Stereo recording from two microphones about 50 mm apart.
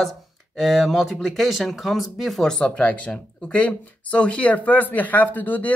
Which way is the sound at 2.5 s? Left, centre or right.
Centre.